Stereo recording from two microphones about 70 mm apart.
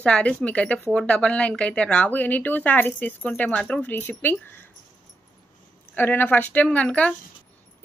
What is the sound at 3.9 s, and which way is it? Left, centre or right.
Speech, left.